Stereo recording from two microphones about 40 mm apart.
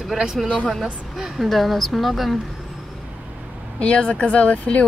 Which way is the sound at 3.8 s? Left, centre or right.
Left.